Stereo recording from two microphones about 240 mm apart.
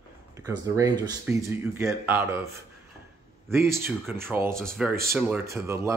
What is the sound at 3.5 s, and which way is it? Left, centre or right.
Speech, centre.